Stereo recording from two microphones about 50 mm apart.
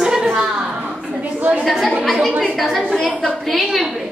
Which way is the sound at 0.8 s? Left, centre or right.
Right.